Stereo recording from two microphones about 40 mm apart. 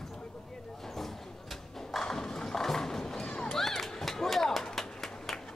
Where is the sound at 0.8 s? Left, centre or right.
Centre.